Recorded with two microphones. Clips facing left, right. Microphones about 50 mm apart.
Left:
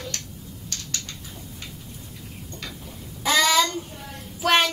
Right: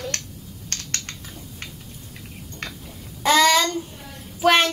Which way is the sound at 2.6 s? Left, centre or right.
Right.